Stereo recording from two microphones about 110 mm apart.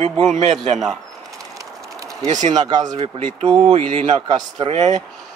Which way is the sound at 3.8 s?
90° right.